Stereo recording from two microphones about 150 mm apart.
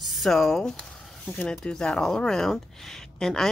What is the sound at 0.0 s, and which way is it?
Speech, centre (ahead or behind).